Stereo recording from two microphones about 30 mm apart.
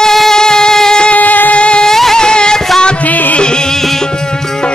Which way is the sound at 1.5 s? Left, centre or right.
Left.